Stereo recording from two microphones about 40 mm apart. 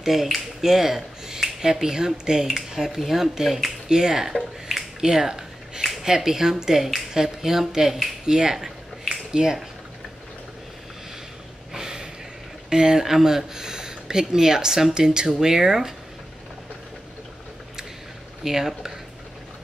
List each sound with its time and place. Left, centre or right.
0.0 s speech: centre
5.0 s speech: centre
11.7 s gasp: centre
12.6 s speech: centre
18.4 s speech: centre